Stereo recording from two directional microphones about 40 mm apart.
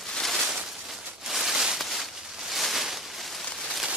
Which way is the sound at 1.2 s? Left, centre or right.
Centre.